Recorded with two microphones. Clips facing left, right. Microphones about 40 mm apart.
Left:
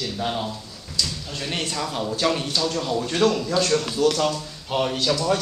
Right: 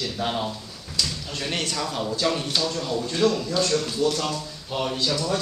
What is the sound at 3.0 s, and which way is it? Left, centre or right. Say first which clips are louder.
Speech: left 1 dB; left.